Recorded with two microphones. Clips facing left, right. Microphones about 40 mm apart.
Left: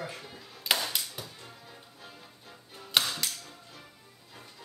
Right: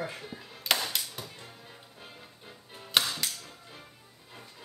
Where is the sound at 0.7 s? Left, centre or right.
Centre.